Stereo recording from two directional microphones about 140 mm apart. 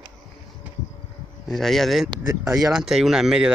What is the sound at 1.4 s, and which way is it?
Speech, centre (ahead or behind).